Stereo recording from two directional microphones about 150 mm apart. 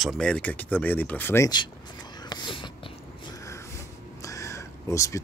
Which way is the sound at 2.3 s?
30° left (ahead or behind).